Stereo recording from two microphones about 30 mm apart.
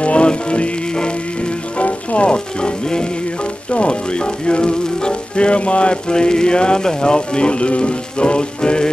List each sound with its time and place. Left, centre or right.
0.0 s music: left
0.3 s music: left